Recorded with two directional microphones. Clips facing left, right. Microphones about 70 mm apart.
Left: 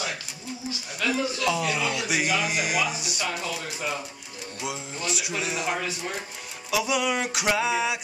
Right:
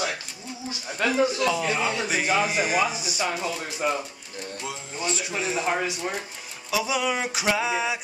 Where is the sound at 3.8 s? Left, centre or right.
Right.